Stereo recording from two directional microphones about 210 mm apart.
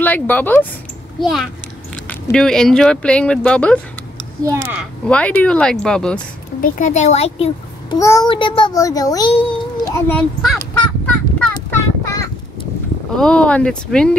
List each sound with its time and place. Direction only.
0.0 s speech: 10° left (ahead or behind)
4.4 s speech: 15° right (ahead or behind)
5.0 s speech: 5° left (ahead or behind)
6.6 s a child's voice: 35° left (ahead or behind)
8.0 s a child's voice: 15° left (ahead or behind)
9.9 s speech: 5° left (ahead or behind)
10.7 s fowl: 5° left (ahead or behind)
13.1 s speech: 5° left (ahead or behind)